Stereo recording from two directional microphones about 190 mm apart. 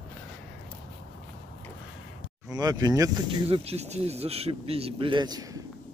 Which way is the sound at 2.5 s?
20° right (ahead or behind).